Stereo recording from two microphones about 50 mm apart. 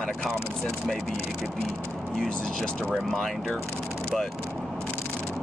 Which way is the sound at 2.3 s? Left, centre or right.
Centre.